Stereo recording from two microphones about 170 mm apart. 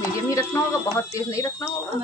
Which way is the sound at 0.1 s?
20° left (ahead or behind).